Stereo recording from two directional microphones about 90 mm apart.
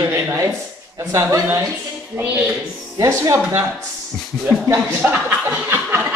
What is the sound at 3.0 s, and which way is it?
Speech, 40° right (ahead or behind).